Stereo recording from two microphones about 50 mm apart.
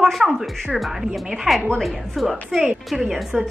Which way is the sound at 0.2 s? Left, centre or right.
Centre.